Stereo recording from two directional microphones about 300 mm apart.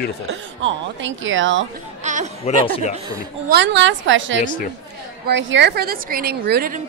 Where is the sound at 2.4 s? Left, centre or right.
Left.